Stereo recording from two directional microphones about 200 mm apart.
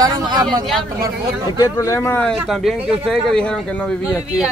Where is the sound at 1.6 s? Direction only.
15° left (ahead or behind).